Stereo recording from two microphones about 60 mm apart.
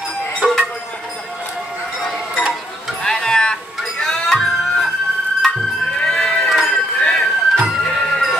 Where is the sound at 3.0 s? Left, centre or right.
Centre.